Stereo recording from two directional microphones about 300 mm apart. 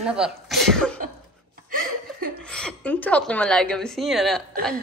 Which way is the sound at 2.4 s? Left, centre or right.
Centre.